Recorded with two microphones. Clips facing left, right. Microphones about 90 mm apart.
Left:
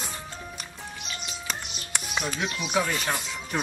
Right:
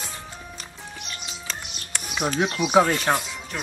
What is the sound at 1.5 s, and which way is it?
Music, 15° left (ahead or behind).